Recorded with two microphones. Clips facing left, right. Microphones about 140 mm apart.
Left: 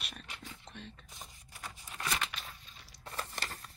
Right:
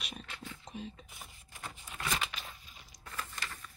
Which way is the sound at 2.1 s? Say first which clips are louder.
Right 1 dB; 5° right (ahead or behind).